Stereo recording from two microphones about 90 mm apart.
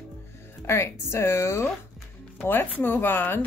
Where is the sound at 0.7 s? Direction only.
30° left (ahead or behind).